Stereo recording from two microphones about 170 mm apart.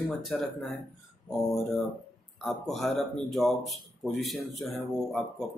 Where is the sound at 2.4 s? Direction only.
Centre (ahead or behind).